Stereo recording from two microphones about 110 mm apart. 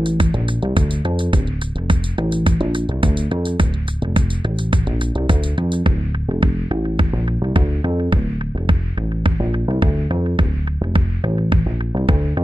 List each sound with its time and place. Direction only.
0.0 s music: 50° right (ahead or behind)
5.2 s music: 50° right (ahead or behind)
9.2 s music: 45° right (ahead or behind)